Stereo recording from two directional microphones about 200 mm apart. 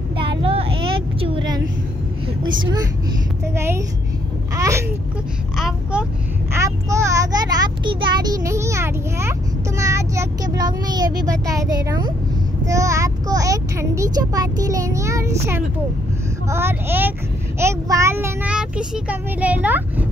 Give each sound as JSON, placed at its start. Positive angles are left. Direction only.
{"t": 0.4, "sound": "vehicle", "side_deg": -30}
{"t": 2.4, "sound": "a child's voice", "side_deg": -20}
{"t": 4.6, "sound": "babbling", "side_deg": -15}
{"t": 5.6, "sound": "speech", "side_deg": -5}
{"t": 6.5, "sound": "a child's voice", "side_deg": -15}